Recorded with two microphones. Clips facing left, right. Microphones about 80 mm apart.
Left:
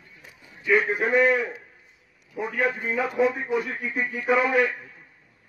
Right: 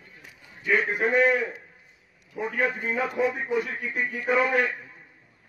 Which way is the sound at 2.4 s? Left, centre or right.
Centre.